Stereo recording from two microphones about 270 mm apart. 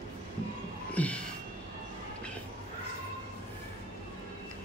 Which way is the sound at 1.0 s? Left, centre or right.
Centre.